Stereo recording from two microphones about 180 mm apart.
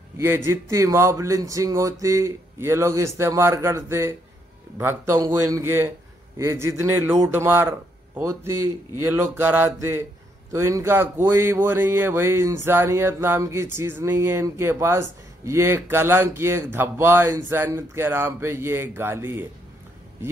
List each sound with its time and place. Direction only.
0.2 s speech: 15° right (ahead or behind)